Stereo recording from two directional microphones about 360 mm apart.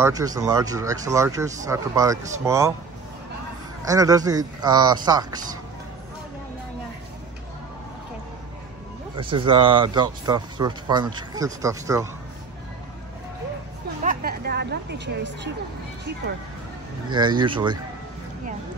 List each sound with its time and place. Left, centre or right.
0.0 s speech: centre
3.8 s speech: centre
9.1 s speech: centre
14.0 s music: right
17.1 s speech: centre